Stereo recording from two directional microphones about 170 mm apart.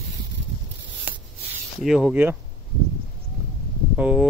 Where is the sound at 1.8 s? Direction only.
5° right (ahead or behind).